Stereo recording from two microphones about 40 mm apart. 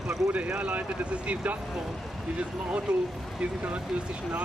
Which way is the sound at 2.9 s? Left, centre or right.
Right.